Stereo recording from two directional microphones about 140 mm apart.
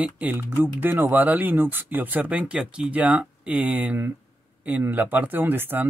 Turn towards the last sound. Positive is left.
turn(degrees=-15)  # may be behind; listen again after turning